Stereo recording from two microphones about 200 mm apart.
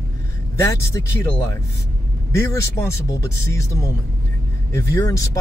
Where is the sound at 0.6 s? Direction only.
15° left (ahead or behind).